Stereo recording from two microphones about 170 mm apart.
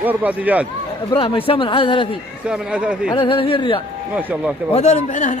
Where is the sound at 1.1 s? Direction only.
30° left (ahead or behind).